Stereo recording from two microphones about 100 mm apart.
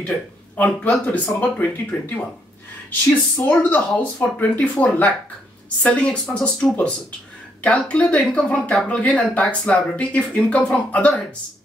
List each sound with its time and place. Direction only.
0.6 s speech: 15° left (ahead or behind)